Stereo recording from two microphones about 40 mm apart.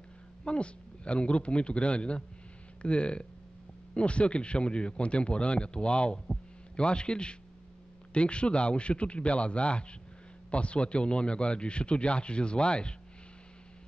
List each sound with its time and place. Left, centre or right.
0.5 s speech: left